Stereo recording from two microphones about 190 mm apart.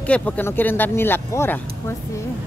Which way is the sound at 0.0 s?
5° left (ahead or behind).